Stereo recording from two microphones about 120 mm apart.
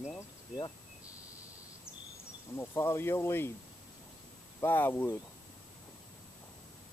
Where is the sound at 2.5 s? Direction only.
20° left (ahead or behind).